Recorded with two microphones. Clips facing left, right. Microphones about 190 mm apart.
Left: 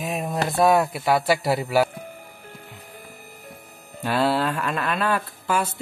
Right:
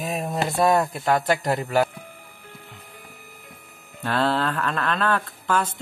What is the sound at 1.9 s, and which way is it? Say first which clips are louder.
Music: left 5 dB; 40° left (ahead or behind).